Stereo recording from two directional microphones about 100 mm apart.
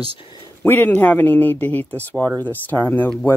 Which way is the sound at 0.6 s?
20° left (ahead or behind).